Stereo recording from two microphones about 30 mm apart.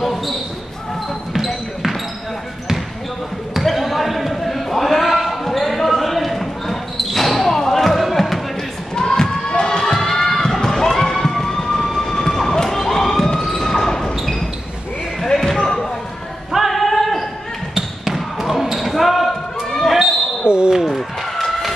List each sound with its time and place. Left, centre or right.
0.0 s basketball bounce: centre
1.3 s basketball bounce: centre
3.6 s basketball bounce: centre
8.0 s a sound: centre
8.9 s crowd: centre
11.3 s emergency vehicle: centre
12.8 s police car: centre
13.3 s basketball bounce: centre
15.2 s basketball bounce: centre
16.5 s a sound: centre
18.0 s basketball bounce: centre
20.4 s basketball bounce: right